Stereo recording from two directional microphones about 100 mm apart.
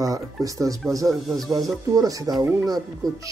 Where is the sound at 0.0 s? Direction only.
35° right (ahead or behind).